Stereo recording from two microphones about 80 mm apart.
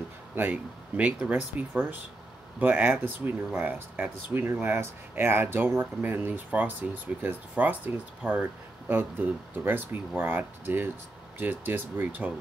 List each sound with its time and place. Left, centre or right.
0.4 s speech: centre